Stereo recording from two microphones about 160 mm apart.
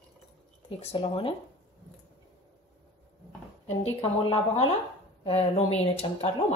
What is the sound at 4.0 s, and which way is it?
Speech, 30° left (ahead or behind).